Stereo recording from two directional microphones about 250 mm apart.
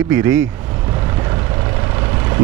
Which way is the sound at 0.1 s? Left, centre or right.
Centre.